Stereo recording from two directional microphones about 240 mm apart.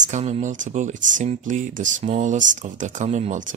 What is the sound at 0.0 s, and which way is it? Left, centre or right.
Speech, right.